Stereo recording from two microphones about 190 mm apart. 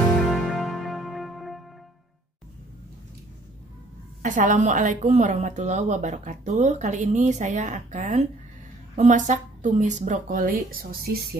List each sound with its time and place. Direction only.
0.3 s music: centre (ahead or behind)
4.2 s a woman's voice: 40° right (ahead or behind)